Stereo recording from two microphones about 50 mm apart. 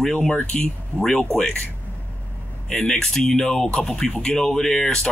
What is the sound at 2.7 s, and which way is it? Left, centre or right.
Speech, centre.